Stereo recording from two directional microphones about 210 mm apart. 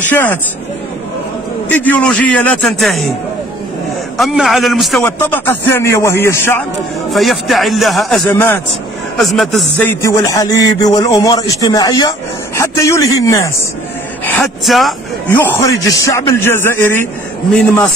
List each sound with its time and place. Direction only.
0.1 s speech: 10° left (ahead or behind)
1.7 s speech: 10° left (ahead or behind)
4.2 s speech: centre (ahead or behind)
5.0 s speech: 10° left (ahead or behind)
7.1 s speech: centre (ahead or behind)
9.8 s speech: 15° left (ahead or behind)
14.2 s speech: 5° left (ahead or behind)